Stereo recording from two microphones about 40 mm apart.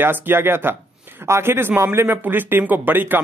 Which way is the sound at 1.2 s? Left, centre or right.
Right.